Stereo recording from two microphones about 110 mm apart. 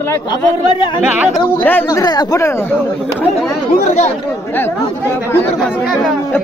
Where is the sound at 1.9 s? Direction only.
35° left (ahead or behind).